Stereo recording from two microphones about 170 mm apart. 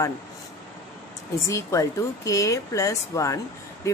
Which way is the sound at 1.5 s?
15° left (ahead or behind).